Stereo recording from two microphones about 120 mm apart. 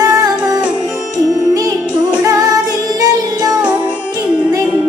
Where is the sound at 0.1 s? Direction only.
30° right (ahead or behind).